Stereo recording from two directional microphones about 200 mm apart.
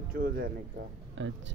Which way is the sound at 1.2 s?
65° right (ahead or behind).